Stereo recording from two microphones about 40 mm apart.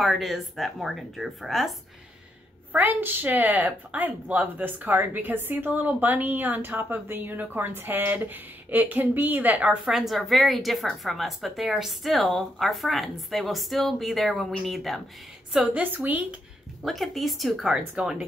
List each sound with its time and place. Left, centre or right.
0.0 s a woman's voice: centre
2.7 s speech: right
5.7 s speech: right
9.8 s a woman's voice: centre
15.7 s speech: right
16.8 s a woman's voice: centre
17.6 s speech: centre